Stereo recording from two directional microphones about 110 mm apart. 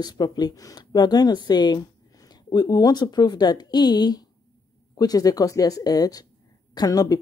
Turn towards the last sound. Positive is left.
turn(degrees=35)  # may be behind; listen again after turning